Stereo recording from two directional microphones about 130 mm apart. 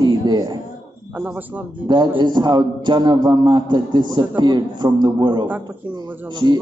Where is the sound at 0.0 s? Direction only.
35° right (ahead or behind).